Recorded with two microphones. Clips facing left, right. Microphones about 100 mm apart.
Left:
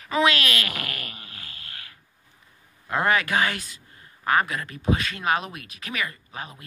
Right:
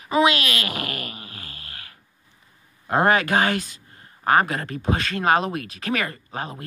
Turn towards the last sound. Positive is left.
turn(degrees=-45)  # may be behind; listen again after turning